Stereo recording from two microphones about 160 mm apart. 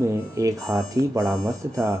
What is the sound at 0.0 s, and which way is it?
Speech, 20° right (ahead or behind).